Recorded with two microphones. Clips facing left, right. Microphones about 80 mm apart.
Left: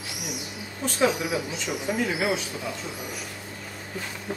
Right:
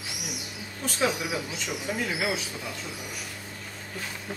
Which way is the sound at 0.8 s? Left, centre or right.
Centre.